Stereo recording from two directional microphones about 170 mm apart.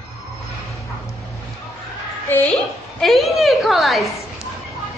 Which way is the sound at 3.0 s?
Centre (ahead or behind).